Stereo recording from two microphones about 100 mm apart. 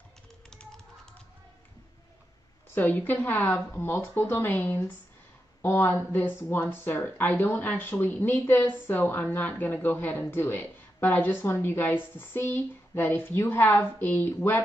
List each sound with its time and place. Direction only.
0.5 s tap: 5° left (ahead or behind)
2.7 s speech: 20° left (ahead or behind)